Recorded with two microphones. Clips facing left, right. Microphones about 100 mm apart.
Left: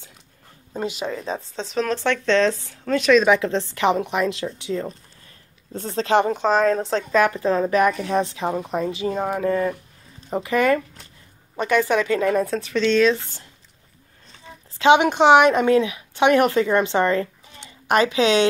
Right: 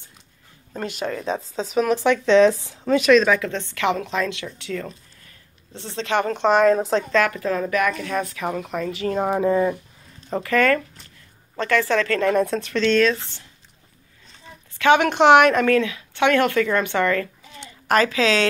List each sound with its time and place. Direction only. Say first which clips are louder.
0.9 s speech: right 2 dB; centre (ahead or behind)
3.3 s speech: left 3 dB; 25° left (ahead or behind)
5.7 s speech: left 5 dB; 40° left (ahead or behind)
6.4 s speech: right 2 dB; centre (ahead or behind)
7.1 s speech: left 2 dB; 20° left (ahead or behind)
9.2 s speech: right 3 dB; 15° right (ahead or behind)
10.3 s speech: even; 15° left (ahead or behind)
14.8 s speech: left 1 dB; 15° left (ahead or behind)